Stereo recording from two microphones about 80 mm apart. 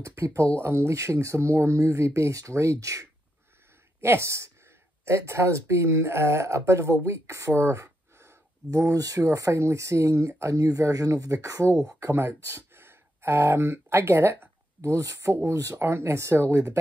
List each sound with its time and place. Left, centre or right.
0.0 s speech: right
12.0 s speech: right
14.8 s speech: right